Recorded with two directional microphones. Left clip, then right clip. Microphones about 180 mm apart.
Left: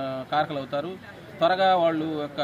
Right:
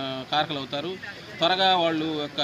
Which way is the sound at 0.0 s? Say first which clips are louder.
Even; 15° left (ahead or behind).